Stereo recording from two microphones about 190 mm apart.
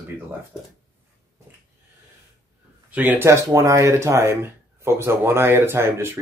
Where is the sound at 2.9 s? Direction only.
10° right (ahead or behind).